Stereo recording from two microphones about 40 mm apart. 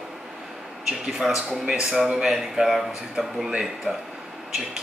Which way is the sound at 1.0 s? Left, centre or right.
Centre.